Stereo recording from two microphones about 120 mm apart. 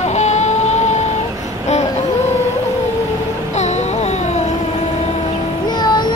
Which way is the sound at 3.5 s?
70° left (ahead or behind).